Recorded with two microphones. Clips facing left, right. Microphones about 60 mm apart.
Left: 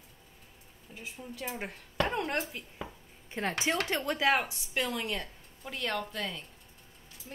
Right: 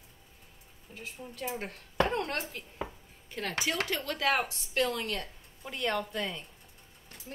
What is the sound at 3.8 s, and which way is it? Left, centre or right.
Speech, centre.